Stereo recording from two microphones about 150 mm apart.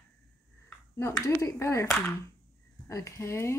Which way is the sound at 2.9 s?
20° left (ahead or behind).